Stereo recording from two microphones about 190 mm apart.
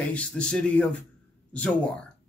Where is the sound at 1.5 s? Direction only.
5° left (ahead or behind).